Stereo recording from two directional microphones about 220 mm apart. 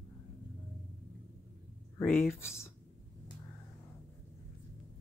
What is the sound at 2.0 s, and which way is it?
Speech, 10° left (ahead or behind).